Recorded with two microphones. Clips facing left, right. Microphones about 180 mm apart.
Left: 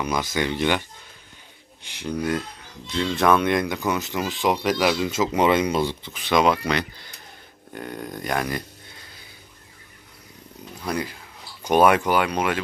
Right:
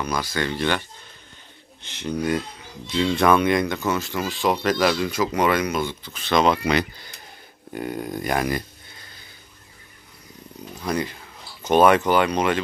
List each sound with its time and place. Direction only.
0.0 s speech: 20° left (ahead or behind)
2.0 s speech: centre (ahead or behind)
3.6 s speech: 10° left (ahead or behind); by 6.1 s 30° left (ahead or behind)
6.1 s speech: 10° left (ahead or behind)
6.6 s speech: 5° right (ahead or behind)
10.8 s speech: 5° left (ahead or behind)